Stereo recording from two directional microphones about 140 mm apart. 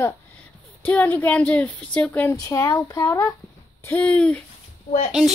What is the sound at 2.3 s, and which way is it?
Speech, 20° left (ahead or behind).